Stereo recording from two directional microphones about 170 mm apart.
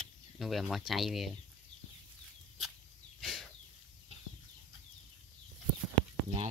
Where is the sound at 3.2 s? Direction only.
Centre (ahead or behind).